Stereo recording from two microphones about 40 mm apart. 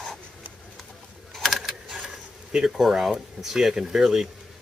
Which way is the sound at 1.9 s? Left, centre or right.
Right.